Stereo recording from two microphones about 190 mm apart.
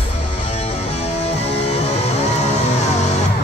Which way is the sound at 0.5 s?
35° left (ahead or behind).